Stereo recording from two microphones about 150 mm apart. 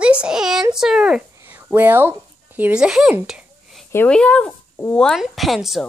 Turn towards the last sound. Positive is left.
turn(degrees=0)  # may be behind; listen again after turning